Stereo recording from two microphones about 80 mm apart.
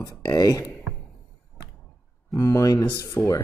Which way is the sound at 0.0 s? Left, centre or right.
Left.